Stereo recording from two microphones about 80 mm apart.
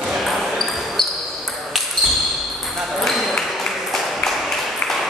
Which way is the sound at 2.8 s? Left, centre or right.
Centre.